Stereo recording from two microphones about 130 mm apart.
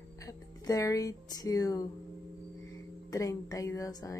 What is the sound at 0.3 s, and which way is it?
A woman's voice, 25° left (ahead or behind).